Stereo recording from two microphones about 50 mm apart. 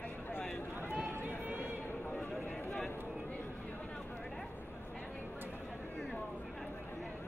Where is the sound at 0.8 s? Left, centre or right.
Right.